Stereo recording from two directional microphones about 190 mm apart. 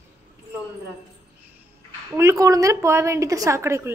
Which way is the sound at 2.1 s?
15° right (ahead or behind).